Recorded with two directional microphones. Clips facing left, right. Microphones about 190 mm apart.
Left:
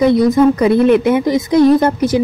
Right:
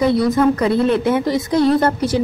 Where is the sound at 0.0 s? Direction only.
15° left (ahead or behind).